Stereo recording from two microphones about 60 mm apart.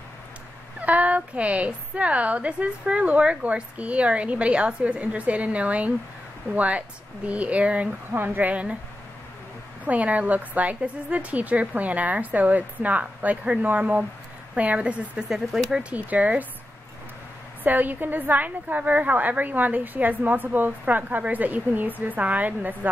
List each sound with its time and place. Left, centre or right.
0.7 s a woman's voice: right
8.1 s a woman's voice: right
9.8 s a woman's voice: right
15.2 s speech: centre
15.8 s a woman's voice: right
17.6 s a woman's voice: right